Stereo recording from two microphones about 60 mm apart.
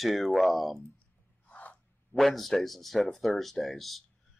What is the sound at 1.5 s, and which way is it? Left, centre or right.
Gasp, left.